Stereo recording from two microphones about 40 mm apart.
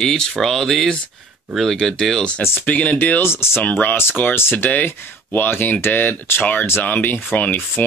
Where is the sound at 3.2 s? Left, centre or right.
Left.